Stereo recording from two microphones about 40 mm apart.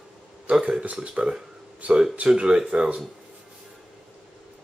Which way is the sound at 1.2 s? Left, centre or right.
Right.